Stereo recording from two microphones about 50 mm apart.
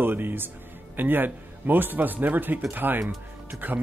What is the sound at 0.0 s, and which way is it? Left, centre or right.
Speech, right.